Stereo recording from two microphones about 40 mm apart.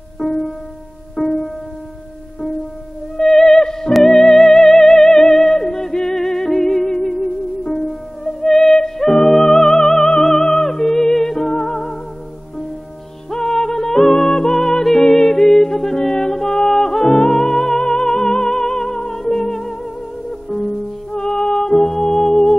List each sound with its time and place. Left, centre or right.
0.2 s music: centre
3.2 s music: centre
5.4 s yodeling: centre
5.7 s music: centre
13.3 s music: centre
21.4 s music: left